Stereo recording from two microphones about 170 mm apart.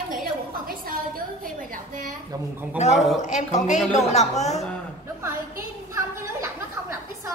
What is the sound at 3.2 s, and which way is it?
A woman's voice, 45° left (ahead or behind).